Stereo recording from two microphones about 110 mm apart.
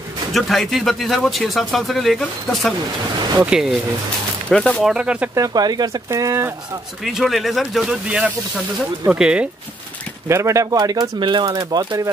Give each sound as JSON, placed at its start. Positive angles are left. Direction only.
{"t": 0.3, "sound": "speech", "side_deg": 0}
{"t": 3.0, "sound": "speech", "side_deg": -40}
{"t": 3.4, "sound": "speech", "side_deg": -5}
{"t": 4.5, "sound": "speech", "side_deg": 10}
{"t": 4.8, "sound": "speech", "side_deg": -10}
{"t": 5.3, "sound": "speech", "side_deg": -35}
{"t": 6.0, "sound": "speech", "side_deg": -25}
{"t": 7.1, "sound": "speech", "side_deg": 0}
{"t": 10.2, "sound": "speech", "side_deg": -25}